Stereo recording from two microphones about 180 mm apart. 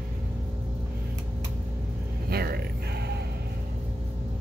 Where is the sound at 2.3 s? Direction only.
60° right (ahead or behind).